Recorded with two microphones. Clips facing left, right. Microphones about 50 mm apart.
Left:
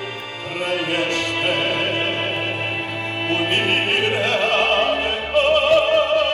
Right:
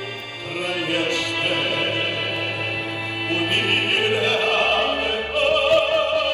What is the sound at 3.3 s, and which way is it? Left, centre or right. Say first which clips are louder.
Music: left 2 dB; left.